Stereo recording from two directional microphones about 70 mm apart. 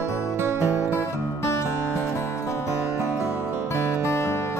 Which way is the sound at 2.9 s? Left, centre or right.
Right.